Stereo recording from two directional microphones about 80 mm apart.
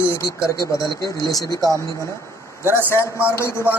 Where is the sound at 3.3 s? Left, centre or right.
Left.